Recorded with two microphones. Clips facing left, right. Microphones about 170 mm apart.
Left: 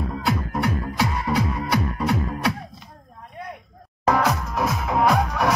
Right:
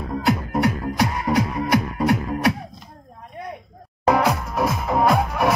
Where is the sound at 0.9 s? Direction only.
15° right (ahead or behind).